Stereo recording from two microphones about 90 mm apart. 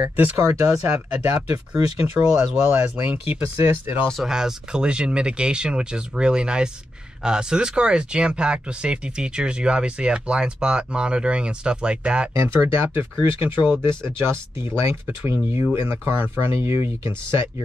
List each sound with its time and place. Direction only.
0.4 s speech: 30° right (ahead or behind)
2.1 s speech: 10° right (ahead or behind)
2.7 s speech: 25° right (ahead or behind)
4.1 s speech: 5° right (ahead or behind)
12.4 s speech: 30° right (ahead or behind)